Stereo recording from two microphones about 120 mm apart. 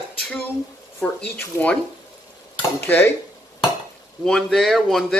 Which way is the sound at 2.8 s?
20° left (ahead or behind).